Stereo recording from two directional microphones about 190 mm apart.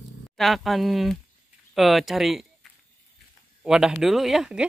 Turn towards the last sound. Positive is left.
turn(degrees=-5)  # may be behind; listen again after turning